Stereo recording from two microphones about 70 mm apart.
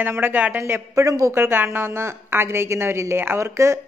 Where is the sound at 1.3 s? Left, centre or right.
Right.